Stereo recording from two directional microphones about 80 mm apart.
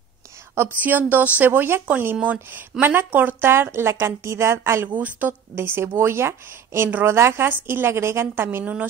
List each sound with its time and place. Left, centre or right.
0.6 s speech: right
2.1 s a woman's voice: centre
2.8 s a woman's voice: right
4.8 s speech: right
5.6 s a woman's voice: right